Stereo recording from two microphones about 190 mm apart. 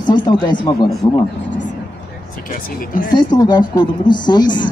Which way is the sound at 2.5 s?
45° left (ahead or behind).